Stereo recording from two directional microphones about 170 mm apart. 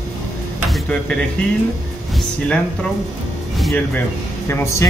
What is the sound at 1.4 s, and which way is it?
Speech, 5° left (ahead or behind).